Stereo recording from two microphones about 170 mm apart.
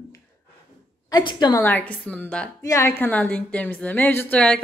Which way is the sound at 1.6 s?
10° left (ahead or behind).